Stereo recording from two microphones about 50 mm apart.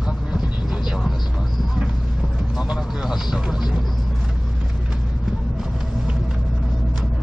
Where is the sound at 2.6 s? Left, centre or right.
Centre.